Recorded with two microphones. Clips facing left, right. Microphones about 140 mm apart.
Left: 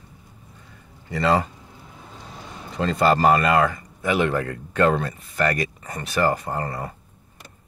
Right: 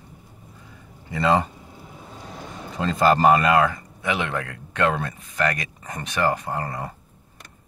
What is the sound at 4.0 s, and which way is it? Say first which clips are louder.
Speech: left 5 dB; 5° left (ahead or behind).